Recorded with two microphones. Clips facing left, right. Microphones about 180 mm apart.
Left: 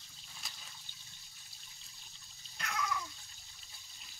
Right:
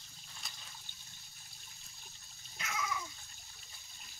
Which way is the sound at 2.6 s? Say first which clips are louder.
Left 1 dB; 5° right (ahead or behind).